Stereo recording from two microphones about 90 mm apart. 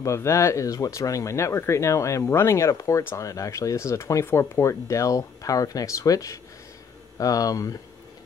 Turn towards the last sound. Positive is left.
turn(degrees=40)  # may be behind; listen again after turning